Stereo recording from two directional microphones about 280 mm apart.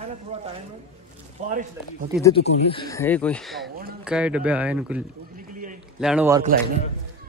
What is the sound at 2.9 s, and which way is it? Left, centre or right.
Speech, centre.